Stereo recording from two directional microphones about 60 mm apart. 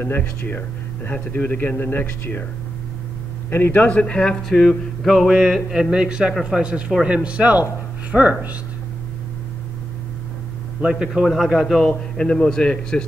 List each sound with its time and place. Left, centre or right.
0.0 s speech: left
3.4 s speech: left
3.9 s speech: centre
5.1 s a sound: centre
7.2 s speech: right
11.1 s speech: centre
12.2 s speech: centre